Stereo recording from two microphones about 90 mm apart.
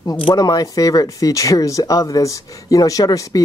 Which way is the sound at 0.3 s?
40° left (ahead or behind).